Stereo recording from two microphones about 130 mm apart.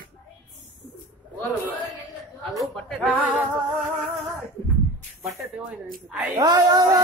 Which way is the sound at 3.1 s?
10° right (ahead or behind).